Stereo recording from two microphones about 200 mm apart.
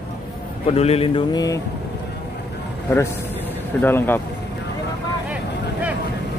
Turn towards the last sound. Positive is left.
turn(degrees=-5)  # may be behind; listen again after turning